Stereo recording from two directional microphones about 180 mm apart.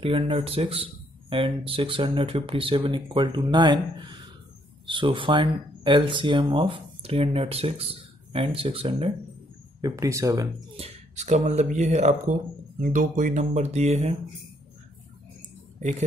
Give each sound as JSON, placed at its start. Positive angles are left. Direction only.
{"t": 0.0, "sound": "speech", "side_deg": -30}
{"t": 9.8, "sound": "speech", "side_deg": -20}
{"t": 10.8, "sound": "speech", "side_deg": -40}